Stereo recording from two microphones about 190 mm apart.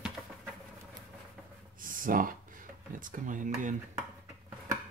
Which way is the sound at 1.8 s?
45° right (ahead or behind).